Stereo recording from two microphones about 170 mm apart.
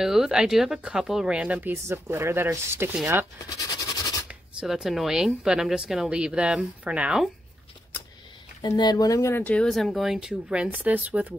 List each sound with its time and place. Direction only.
0.0 s speech: 5° right (ahead or behind)
3.4 s a sound: 20° left (ahead or behind)
4.3 s speech: 5° right (ahead or behind)
8.6 s speech: 25° left (ahead or behind); by 11.3 s 10° right (ahead or behind)